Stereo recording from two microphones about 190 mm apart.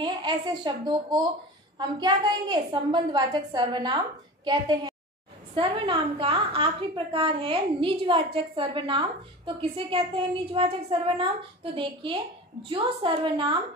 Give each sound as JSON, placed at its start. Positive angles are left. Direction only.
{"t": 0.0, "sound": "a woman's voice", "side_deg": -25}